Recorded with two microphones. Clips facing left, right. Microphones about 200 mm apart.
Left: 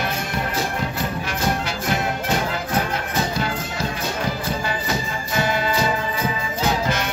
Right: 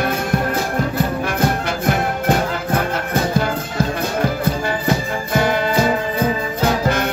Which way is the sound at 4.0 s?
55° right (ahead or behind).